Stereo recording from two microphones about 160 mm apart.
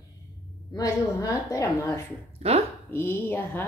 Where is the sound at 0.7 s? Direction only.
25° left (ahead or behind).